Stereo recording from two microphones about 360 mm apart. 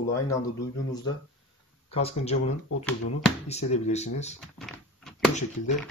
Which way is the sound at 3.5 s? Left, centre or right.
Centre.